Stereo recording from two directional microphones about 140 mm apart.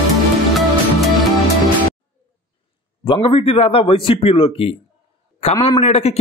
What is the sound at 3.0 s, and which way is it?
A man's voice, 35° left (ahead or behind).